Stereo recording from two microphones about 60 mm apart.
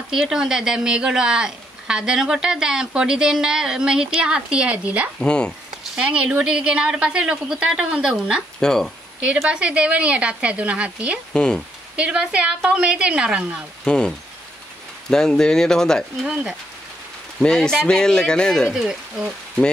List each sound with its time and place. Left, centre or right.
0.1 s a woman's voice: centre
5.2 s speech: centre
5.9 s a woman's voice: centre
8.5 s speech: centre
9.5 s speech: centre
11.3 s speech: centre
12.0 s a woman's voice: centre
13.8 s speech: centre
17.4 s speech: centre
18.7 s a woman's voice: centre